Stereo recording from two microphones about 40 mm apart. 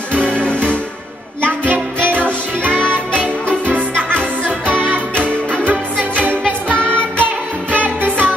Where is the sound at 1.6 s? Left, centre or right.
Right.